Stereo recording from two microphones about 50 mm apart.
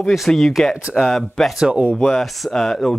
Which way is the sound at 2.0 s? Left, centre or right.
Centre.